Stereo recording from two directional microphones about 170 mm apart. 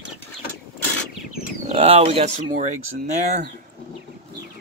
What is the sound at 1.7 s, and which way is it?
Speech, 35° right (ahead or behind).